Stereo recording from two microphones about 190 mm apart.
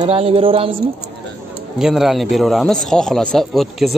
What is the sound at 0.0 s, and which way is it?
Speech, 30° right (ahead or behind).